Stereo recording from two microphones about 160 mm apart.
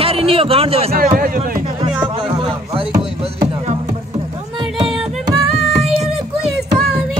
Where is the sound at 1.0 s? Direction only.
60° right (ahead or behind).